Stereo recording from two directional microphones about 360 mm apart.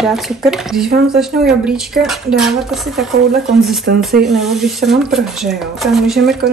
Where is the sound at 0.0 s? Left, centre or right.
Centre.